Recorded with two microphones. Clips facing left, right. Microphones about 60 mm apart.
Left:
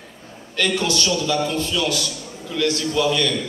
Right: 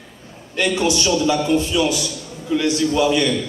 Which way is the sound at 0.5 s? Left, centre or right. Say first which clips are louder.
Right 2 dB; right.